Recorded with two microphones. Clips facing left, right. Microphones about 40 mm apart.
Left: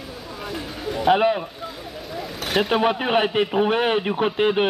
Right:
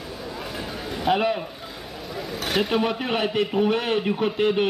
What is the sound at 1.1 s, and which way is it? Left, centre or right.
Speech, centre.